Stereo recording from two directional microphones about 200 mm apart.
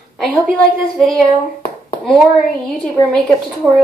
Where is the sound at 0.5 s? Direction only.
5° left (ahead or behind).